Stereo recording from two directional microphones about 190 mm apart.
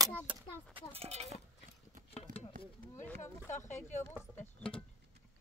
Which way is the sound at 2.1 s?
35° left (ahead or behind).